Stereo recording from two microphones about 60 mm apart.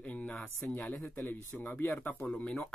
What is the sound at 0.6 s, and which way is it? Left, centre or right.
Speech, left.